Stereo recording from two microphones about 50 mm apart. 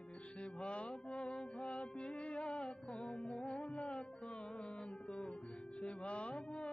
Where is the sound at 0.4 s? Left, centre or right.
Left.